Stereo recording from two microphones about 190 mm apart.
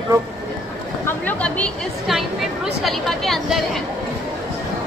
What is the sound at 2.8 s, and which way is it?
Speech, centre (ahead or behind).